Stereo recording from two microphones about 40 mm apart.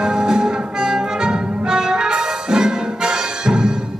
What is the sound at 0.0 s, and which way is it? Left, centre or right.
Music, centre.